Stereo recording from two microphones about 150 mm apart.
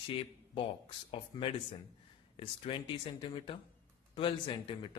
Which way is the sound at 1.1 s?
35° left (ahead or behind).